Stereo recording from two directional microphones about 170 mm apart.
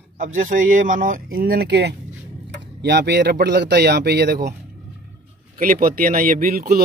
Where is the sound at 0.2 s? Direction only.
50° right (ahead or behind); by 4.4 s 70° right (ahead or behind).